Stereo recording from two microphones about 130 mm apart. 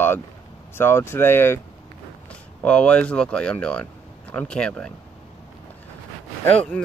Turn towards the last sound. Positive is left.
turn(degrees=5)  # may be behind; listen again after turning